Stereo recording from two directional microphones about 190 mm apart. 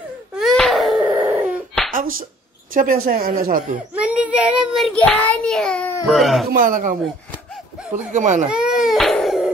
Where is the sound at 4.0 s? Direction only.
5° right (ahead or behind).